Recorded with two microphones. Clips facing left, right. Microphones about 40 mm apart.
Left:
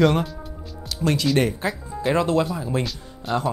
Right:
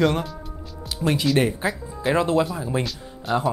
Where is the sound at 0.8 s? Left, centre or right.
Centre.